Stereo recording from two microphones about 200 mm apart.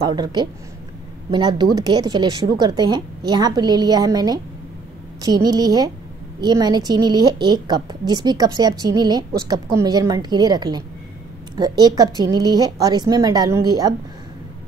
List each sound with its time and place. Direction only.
0.0 s a woman's voice: 20° right (ahead or behind)